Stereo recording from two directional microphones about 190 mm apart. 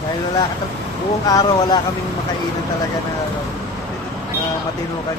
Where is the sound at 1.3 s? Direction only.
20° left (ahead or behind).